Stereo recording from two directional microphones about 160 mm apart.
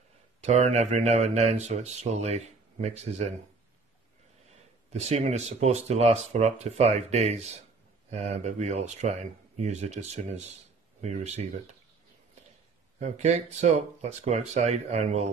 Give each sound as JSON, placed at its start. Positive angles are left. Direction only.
{"t": 0.4, "sound": "speech", "side_deg": -45}
{"t": 4.9, "sound": "speech", "side_deg": -45}
{"t": 13.0, "sound": "speech", "side_deg": -45}